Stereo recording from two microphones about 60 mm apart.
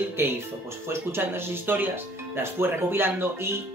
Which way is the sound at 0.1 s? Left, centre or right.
Right.